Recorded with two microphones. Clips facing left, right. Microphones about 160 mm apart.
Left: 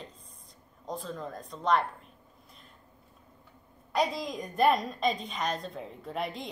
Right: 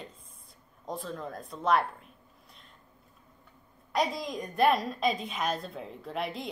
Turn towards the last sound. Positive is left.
turn(degrees=0)  # may be behind; listen again after turning